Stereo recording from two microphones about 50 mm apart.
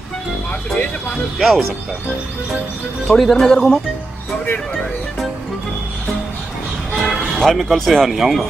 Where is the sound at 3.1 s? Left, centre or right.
Centre.